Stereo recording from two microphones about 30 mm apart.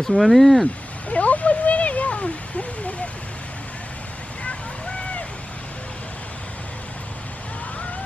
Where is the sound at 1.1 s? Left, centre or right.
Left.